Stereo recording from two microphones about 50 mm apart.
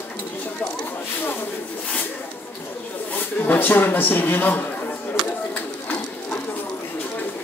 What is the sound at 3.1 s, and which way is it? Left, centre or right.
Speech, left.